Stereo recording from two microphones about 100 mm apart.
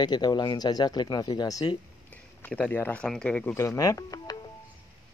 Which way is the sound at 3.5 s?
35° left (ahead or behind).